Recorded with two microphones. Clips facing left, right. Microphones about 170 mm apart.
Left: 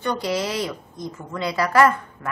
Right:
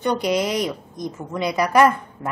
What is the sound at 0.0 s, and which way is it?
A woman's voice, 20° right (ahead or behind).